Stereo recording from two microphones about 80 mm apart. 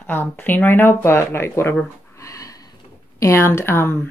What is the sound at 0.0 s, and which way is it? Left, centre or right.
Speech, left.